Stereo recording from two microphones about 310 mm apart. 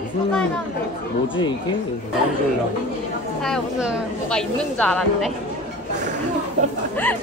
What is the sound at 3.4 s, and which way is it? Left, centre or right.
Speech, centre.